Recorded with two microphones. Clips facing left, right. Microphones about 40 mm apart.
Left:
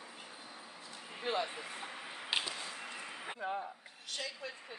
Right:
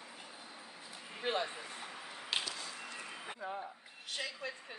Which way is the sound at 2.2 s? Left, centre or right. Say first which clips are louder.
Left 2 dB; left.